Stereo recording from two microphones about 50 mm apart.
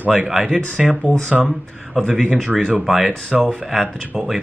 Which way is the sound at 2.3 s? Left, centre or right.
Centre.